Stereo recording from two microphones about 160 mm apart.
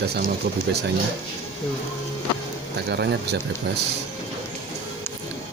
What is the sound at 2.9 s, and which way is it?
Speech, 90° right.